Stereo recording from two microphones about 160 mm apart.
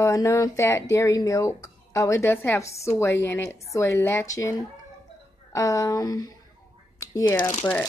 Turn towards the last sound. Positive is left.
turn(degrees=20)  # may be behind; listen again after turning